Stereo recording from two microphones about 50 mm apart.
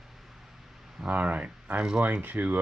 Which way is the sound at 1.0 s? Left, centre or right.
Right.